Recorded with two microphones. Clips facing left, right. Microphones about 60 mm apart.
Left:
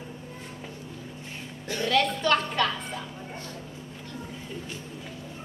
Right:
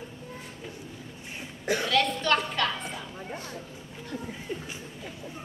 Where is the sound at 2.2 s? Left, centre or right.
Centre.